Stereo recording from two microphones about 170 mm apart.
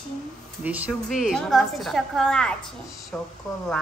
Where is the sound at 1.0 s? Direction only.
Centre (ahead or behind).